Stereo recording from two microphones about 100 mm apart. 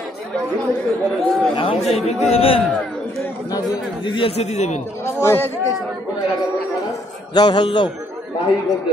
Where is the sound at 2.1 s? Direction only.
80° left.